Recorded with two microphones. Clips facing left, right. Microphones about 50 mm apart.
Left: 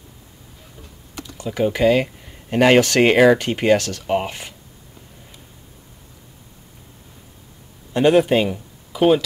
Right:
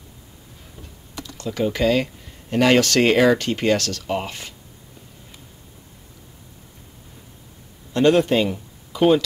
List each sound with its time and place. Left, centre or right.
1.2 s speech: centre
7.9 s speech: centre